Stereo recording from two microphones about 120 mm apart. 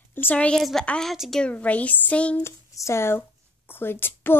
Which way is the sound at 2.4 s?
20° left (ahead or behind).